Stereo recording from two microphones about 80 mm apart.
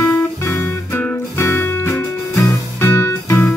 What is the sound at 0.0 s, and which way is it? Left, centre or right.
Music, left.